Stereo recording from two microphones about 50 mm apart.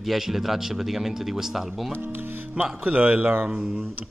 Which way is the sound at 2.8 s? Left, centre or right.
Right.